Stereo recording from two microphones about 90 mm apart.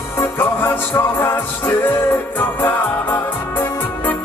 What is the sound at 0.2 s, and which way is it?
Music, 25° left (ahead or behind).